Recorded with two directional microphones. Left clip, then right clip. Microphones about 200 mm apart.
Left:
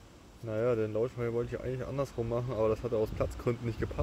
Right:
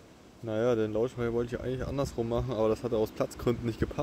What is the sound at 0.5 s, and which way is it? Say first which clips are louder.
Speech: right 2 dB; 20° right (ahead or behind).